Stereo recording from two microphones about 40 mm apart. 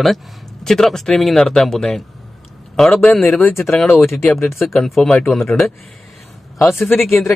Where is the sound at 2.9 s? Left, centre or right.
Centre.